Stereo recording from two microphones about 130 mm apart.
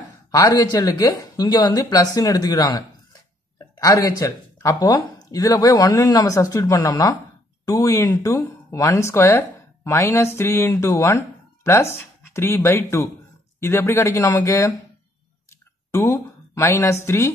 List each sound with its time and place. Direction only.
0.3 s speech: 30° left (ahead or behind)
15.9 s a woman's voice: 20° left (ahead or behind)